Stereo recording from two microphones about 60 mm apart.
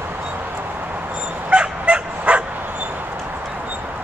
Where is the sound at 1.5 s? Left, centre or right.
Centre.